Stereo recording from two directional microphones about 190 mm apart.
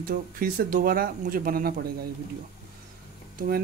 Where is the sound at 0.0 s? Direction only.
50° right (ahead or behind).